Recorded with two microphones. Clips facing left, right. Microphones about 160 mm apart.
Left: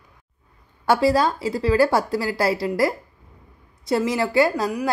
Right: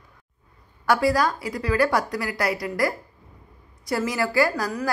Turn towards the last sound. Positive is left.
turn(degrees=25)  # may be behind; listen again after turning